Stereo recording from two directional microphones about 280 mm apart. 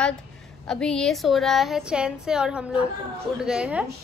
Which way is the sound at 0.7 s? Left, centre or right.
Centre.